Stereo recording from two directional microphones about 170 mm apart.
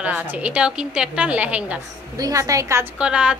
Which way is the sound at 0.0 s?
10° right (ahead or behind).